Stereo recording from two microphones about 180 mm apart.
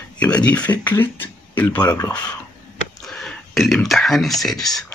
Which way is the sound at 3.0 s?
Centre (ahead or behind).